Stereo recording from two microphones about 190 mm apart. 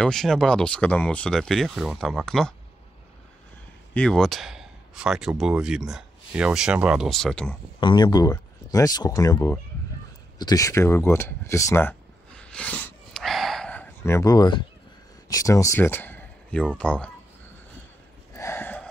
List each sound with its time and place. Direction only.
0.0 s speech: centre (ahead or behind)
3.9 s speech: 5° left (ahead or behind)
7.8 s speech: 25° left (ahead or behind)
12.4 s a sound: 5° left (ahead or behind); by 14.6 s 20° left (ahead or behind)
15.2 s speech: 15° left (ahead or behind)
18.3 s gasp: 15° left (ahead or behind)